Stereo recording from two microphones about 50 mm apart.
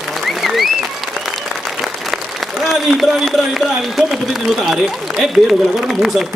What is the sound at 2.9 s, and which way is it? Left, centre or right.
A man's voice, centre.